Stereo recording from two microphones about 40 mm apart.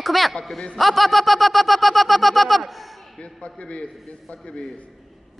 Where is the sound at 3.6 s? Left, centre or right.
Left.